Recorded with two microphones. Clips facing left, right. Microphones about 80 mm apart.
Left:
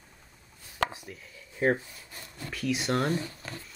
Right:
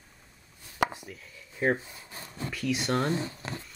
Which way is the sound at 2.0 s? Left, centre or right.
Right.